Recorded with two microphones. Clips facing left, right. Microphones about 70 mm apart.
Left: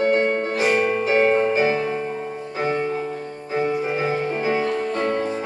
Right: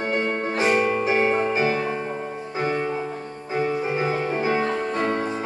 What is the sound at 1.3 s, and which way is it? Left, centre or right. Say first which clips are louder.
Music: left 3 dB; centre.